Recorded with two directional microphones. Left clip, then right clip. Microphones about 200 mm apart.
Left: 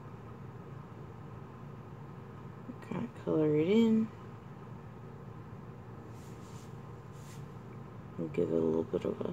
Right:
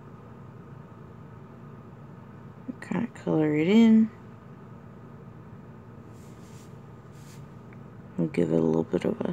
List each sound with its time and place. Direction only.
2.8 s speech: 30° right (ahead or behind)
8.3 s speech: 35° right (ahead or behind)